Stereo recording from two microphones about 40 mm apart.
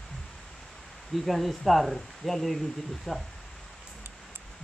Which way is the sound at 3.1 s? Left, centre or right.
Centre.